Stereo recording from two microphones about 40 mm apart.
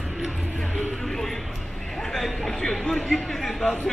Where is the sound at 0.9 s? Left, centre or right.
Centre.